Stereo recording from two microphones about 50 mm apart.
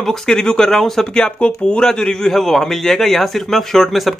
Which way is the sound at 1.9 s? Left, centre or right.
Centre.